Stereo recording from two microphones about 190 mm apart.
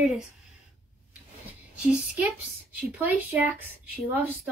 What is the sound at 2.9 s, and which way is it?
Speech, 10° right (ahead or behind).